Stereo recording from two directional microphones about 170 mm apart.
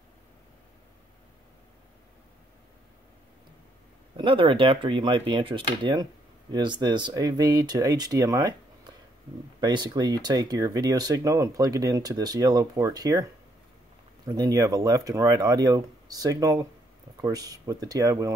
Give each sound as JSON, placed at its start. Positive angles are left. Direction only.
{"t": 4.2, "sound": "speech", "side_deg": -30}
{"t": 14.2, "sound": "speech", "side_deg": -20}